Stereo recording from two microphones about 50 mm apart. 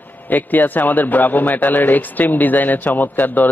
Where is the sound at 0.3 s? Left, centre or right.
Left.